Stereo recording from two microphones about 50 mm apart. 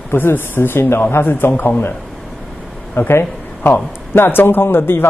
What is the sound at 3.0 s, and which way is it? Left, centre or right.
A man's voice, left.